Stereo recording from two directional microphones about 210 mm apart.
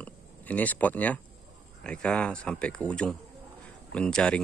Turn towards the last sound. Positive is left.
turn(degrees=5)  # may be behind; listen again after turning